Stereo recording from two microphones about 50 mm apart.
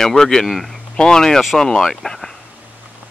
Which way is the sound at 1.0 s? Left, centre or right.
Centre.